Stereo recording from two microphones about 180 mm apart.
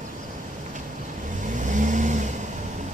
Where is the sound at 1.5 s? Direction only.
45° right (ahead or behind).